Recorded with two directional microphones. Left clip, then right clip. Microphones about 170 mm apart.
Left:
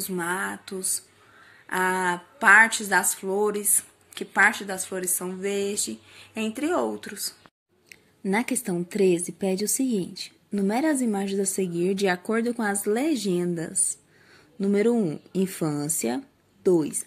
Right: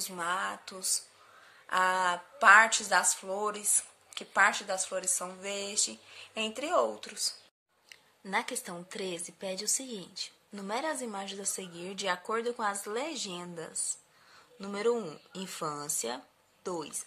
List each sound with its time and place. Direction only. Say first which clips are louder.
0.0 s a woman's voice: left 4 dB; 15° right (ahead or behind)
7.9 s a woman's voice: left 6 dB; 20° left (ahead or behind)